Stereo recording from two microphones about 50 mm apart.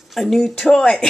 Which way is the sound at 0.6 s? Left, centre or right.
Centre.